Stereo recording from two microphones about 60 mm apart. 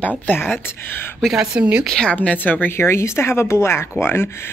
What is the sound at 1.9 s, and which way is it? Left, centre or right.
Speech, centre.